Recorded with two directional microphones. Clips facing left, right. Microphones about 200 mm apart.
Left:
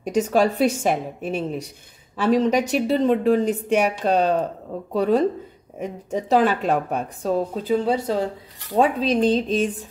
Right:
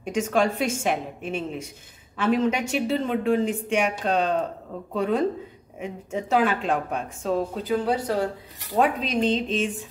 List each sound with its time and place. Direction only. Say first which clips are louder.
0.0 s a woman's voice: left 4 dB; 40° left (ahead or behind)